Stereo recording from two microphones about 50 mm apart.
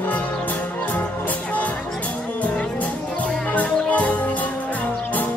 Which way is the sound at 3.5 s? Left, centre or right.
Left.